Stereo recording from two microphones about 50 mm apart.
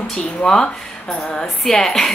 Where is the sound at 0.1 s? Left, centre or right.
Centre.